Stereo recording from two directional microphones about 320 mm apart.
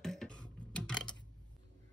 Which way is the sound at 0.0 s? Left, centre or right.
Centre.